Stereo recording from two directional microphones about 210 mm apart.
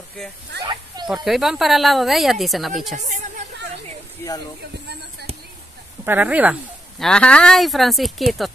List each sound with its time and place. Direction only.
1.0 s speech: centre (ahead or behind)
3.0 s speech: 35° right (ahead or behind)
6.0 s speech: 10° right (ahead or behind)